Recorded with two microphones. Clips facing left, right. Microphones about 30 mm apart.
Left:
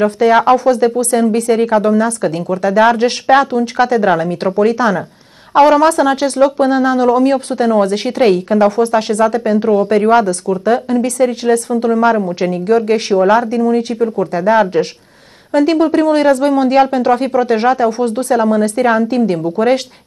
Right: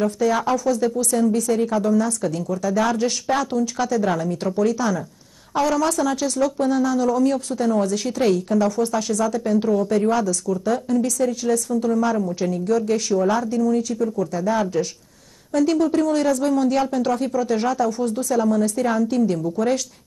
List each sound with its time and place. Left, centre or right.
0.0 s speech: left